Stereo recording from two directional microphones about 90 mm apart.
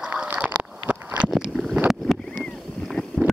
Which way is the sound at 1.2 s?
5° right (ahead or behind).